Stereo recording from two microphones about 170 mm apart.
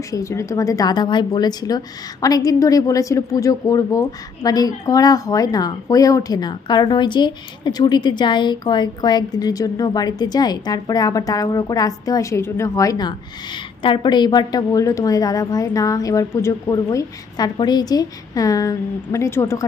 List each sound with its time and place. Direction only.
0.1 s a woman's voice: 20° left (ahead or behind)